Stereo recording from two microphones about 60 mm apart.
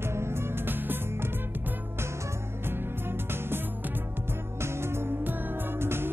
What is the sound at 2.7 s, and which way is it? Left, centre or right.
Music, right.